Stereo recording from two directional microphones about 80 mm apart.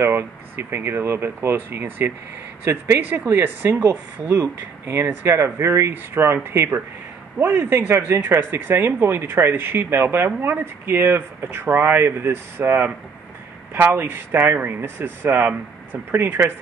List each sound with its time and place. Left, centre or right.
0.0 s speech: right